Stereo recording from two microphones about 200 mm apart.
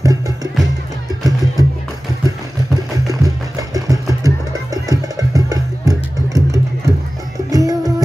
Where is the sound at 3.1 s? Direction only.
20° right (ahead or behind).